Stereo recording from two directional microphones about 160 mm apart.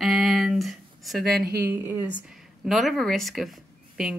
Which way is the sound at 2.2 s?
Centre (ahead or behind).